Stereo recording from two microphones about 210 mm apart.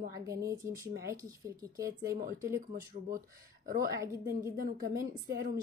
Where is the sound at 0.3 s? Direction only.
15° right (ahead or behind).